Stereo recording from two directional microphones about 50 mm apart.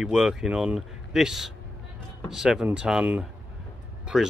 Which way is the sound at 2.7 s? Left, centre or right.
Centre.